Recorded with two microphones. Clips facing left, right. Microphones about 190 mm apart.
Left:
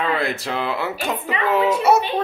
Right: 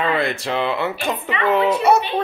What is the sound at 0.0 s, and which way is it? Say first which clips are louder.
A woman's voice: right 2 dB; centre (ahead or behind).